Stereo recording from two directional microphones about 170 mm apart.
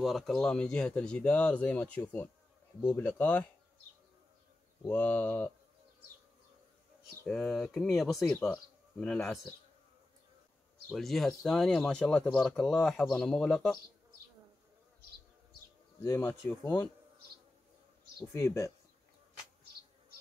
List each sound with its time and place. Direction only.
0.0 s speech: centre (ahead or behind)
4.8 s speech: 10° left (ahead or behind)
7.2 s speech: centre (ahead or behind)
10.9 s speech: centre (ahead or behind)
16.0 s speech: 15° left (ahead or behind)
18.3 s speech: 15° left (ahead or behind)